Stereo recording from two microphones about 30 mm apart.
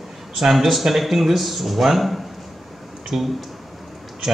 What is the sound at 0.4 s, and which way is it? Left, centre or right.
Speech, centre.